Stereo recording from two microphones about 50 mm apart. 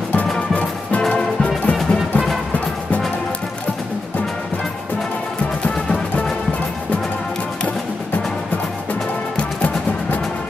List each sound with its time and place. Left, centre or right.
1.1 s music: left